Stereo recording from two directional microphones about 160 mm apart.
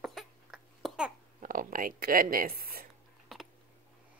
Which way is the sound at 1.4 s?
60° right (ahead or behind).